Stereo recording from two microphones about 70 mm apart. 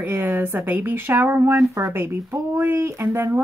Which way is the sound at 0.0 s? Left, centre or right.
Right.